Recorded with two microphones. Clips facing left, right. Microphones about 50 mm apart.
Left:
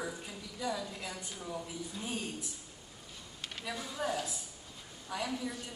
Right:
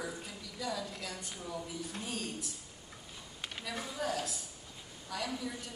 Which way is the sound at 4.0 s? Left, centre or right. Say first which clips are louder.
Left 1 dB; centre.